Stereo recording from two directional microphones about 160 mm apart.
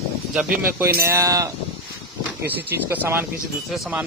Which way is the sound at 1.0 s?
20° right (ahead or behind).